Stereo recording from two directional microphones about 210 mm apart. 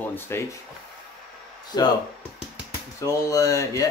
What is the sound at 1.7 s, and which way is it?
Speech, 20° left (ahead or behind).